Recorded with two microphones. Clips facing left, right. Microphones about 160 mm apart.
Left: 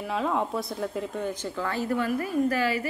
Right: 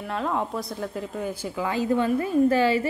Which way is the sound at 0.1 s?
Centre (ahead or behind).